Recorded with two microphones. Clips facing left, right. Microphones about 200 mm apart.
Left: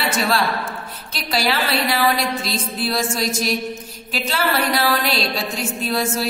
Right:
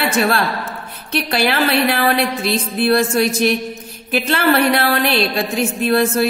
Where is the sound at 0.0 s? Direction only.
55° right (ahead or behind).